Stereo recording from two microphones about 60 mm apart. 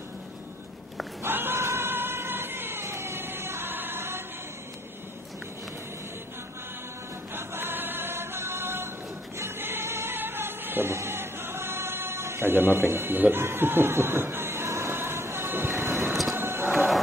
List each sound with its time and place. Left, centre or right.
1.2 s a sound: right
7.3 s choir: right
9.4 s music: right
15.9 s music: centre
16.3 s music: right
16.6 s a sound: centre